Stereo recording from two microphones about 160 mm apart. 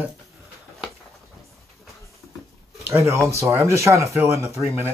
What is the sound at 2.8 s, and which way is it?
Speech, 15° right (ahead or behind).